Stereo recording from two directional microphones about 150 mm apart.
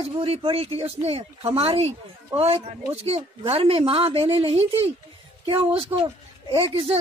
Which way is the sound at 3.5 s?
40° right (ahead or behind).